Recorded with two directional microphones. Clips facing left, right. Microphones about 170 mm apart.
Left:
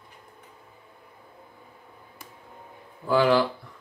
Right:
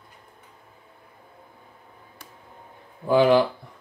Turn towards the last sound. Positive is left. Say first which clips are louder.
# right 3 dB
turn(degrees=-20)  # may be behind; listen again after turning